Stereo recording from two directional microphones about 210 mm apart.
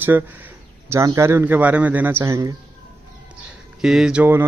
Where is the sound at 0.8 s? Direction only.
15° right (ahead or behind).